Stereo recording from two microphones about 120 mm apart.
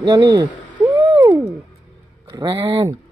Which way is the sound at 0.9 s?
30° right (ahead or behind).